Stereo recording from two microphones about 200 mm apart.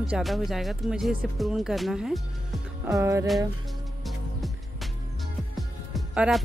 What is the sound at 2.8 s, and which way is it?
Music, 15° right (ahead or behind).